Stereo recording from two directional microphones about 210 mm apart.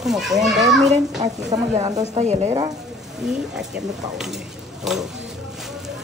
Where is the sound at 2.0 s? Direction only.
30° right (ahead or behind).